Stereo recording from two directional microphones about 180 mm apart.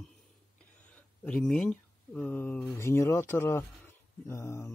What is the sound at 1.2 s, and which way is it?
Speech, 5° left (ahead or behind).